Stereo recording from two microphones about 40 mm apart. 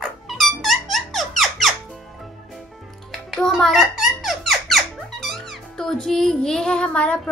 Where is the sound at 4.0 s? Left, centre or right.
Centre.